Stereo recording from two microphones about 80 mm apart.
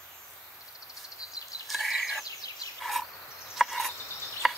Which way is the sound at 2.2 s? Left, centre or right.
Left.